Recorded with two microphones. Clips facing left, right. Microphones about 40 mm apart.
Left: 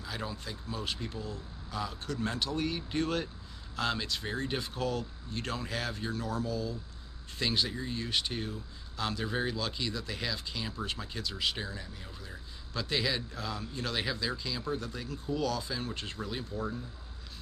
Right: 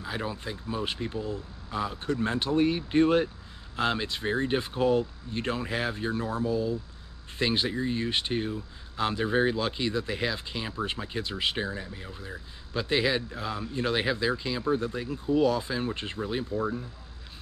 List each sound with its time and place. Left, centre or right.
0.0 s speech: right